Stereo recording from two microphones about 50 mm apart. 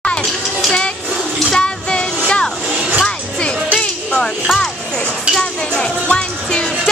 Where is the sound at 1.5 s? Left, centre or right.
Centre.